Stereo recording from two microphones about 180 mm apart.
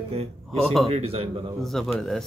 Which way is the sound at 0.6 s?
Centre (ahead or behind).